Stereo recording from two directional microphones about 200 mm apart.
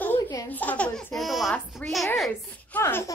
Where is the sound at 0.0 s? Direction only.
10° left (ahead or behind).